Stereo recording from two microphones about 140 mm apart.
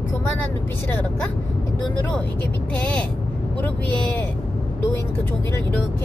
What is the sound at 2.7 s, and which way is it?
Speech, 10° left (ahead or behind).